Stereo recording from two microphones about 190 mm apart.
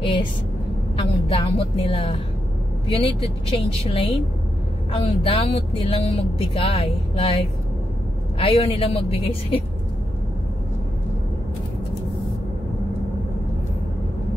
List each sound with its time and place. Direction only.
0.0 s vehicle: 25° left (ahead or behind)
0.9 s speech: 30° left (ahead or behind)
8.4 s speech: 30° left (ahead or behind)